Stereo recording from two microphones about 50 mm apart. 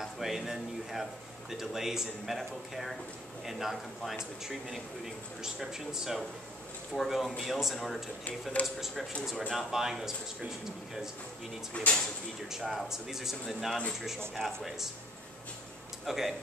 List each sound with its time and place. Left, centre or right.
0.0 s speech: centre
11.7 s speech: left
12.4 s speech: centre
16.1 s speech: centre